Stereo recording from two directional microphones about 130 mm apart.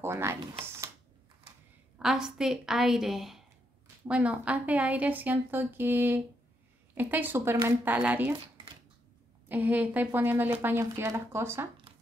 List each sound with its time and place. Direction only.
0.0 s speech: 20° right (ahead or behind)
2.0 s a woman's voice: 5° right (ahead or behind)
9.5 s speech: 15° right (ahead or behind)